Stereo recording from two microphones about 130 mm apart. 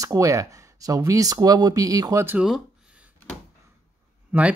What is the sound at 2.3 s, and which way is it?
Speech, 5° right (ahead or behind).